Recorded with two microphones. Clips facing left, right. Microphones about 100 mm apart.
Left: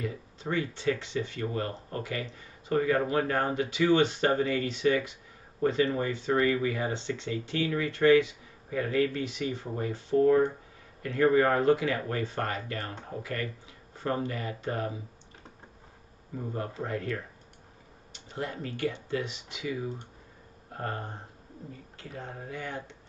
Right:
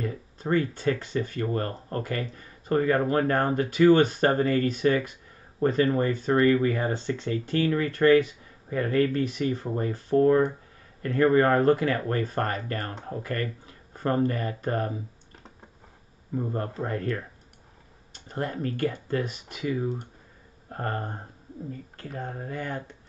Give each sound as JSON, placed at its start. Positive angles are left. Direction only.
{"t": 0.0, "sound": "speech", "side_deg": -45}
{"t": 16.5, "sound": "speech", "side_deg": -45}